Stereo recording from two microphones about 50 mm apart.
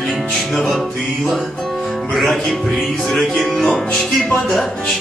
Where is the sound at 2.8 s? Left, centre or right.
Centre.